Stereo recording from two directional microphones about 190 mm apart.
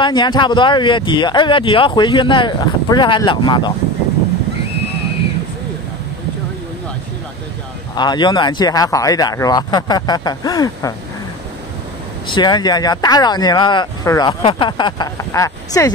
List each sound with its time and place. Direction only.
0.0 s speech: 25° left (ahead or behind)
7.9 s speech: 20° left (ahead or behind)
12.4 s speech: 20° left (ahead or behind)